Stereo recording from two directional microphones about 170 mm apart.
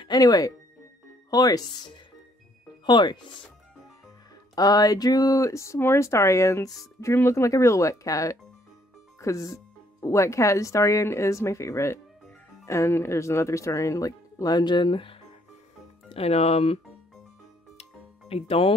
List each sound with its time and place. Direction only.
0.0 s speech: 20° left (ahead or behind)
4.6 s speech: 20° left (ahead or behind); by 16.8 s 40° left (ahead or behind)
18.3 s speech: 35° left (ahead or behind)